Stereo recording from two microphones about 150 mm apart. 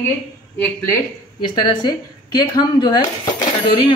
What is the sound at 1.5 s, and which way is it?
A woman's voice, 30° left (ahead or behind).